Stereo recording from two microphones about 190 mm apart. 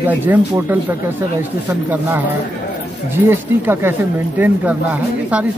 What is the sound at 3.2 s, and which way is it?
Speech, 10° right (ahead or behind).